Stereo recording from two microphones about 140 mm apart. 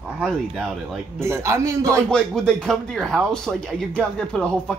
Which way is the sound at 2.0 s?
5° left (ahead or behind).